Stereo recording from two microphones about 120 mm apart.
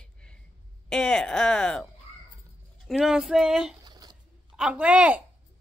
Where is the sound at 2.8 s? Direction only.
5° right (ahead or behind).